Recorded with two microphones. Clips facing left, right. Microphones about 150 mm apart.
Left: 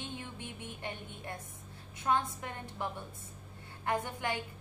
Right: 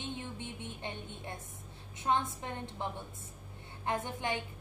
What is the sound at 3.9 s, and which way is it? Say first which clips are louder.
Speech: left 1 dB; 25° right (ahead or behind).